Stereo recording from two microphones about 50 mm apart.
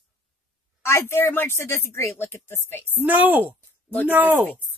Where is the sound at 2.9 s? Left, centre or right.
Right.